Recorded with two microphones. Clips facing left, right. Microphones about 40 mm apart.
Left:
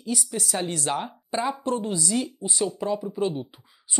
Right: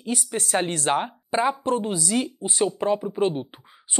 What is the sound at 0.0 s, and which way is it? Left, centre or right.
Speech, right.